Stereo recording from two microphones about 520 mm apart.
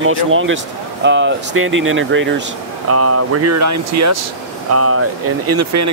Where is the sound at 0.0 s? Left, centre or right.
Right.